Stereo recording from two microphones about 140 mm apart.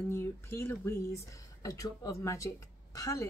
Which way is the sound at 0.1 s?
20° left (ahead or behind).